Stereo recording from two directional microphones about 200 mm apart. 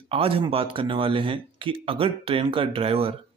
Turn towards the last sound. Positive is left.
turn(degrees=-30)  # may be behind; listen again after turning